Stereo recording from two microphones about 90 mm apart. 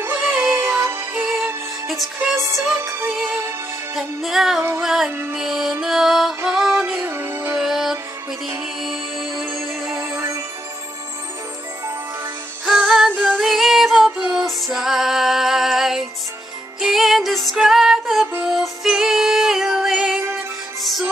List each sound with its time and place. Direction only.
0.2 s music: 5° right (ahead or behind)
0.6 s music: 25° right (ahead or behind)
1.1 s music: 5° right (ahead or behind)
2.5 s music: 5° right (ahead or behind)
2.8 s music: 30° right (ahead or behind)
3.1 s music: 15° right (ahead or behind)
3.9 s music: 5° right (ahead or behind)
6.8 s music: 20° right (ahead or behind)
7.6 s music: 5° right (ahead or behind)
9.8 s music: 30° right (ahead or behind)
12.6 s music: 5° right (ahead or behind)
13.1 s female singing: 15° right (ahead or behind)
13.4 s music: 5° right (ahead or behind)